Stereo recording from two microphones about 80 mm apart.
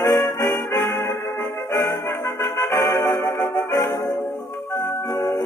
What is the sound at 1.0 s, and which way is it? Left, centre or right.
Music, left.